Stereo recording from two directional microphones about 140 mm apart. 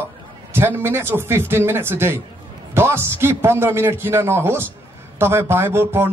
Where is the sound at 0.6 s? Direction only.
15° right (ahead or behind).